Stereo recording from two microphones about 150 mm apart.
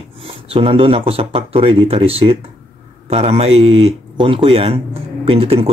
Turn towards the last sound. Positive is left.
turn(degrees=-40)  # may be behind; listen again after turning